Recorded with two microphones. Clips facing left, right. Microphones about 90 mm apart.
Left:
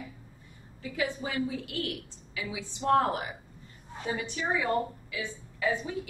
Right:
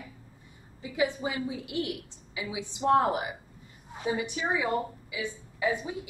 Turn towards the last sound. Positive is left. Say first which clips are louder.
# even
turn(degrees=-15)  # may be behind; listen again after turning